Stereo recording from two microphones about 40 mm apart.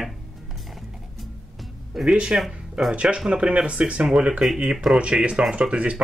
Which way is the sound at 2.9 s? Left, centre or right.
Right.